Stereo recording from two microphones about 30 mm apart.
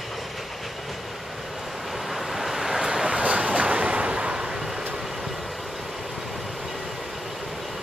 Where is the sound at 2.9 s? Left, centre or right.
Right.